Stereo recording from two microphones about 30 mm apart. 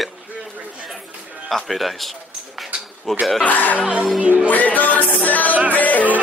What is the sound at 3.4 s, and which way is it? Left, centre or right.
Speech, left.